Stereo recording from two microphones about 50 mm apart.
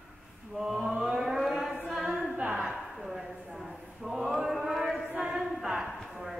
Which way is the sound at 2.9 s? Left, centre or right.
Centre.